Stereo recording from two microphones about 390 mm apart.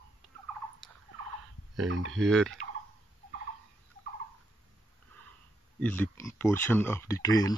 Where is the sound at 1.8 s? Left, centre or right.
Right.